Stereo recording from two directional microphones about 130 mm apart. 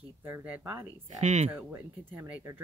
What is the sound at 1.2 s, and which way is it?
Speech, 65° right (ahead or behind).